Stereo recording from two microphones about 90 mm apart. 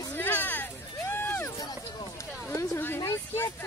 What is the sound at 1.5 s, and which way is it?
Run, 50° left (ahead or behind).